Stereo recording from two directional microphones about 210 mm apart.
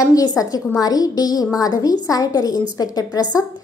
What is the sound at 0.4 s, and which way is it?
A woman's voice, 15° left (ahead or behind).